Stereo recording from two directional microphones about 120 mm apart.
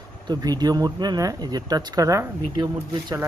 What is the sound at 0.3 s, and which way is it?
Speech, 35° right (ahead or behind).